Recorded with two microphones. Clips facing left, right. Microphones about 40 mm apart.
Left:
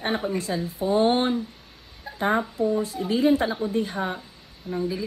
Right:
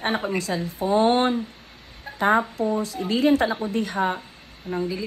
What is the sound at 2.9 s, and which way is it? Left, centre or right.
Speech, right.